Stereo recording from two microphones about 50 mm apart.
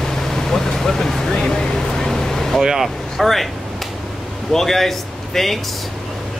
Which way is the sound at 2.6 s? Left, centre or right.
Centre.